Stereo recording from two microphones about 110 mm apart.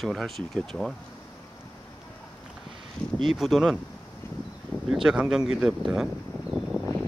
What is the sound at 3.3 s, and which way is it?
Speech, centre (ahead or behind).